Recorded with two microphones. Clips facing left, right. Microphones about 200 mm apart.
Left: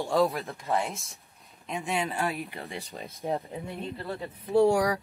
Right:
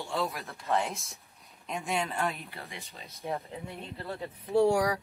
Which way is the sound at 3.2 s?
35° left (ahead or behind).